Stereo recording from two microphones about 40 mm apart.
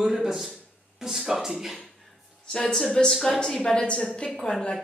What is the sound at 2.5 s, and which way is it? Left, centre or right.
Speech, centre.